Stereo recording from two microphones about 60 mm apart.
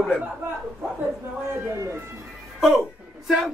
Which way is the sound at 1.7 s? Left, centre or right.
Right.